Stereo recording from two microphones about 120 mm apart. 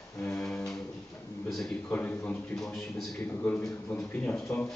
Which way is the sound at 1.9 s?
15° left (ahead or behind).